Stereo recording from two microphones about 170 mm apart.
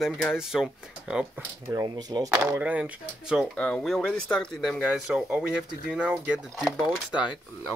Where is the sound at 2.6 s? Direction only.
10° right (ahead or behind).